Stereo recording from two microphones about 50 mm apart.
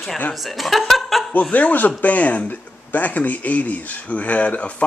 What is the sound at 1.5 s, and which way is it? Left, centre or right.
Speech, left.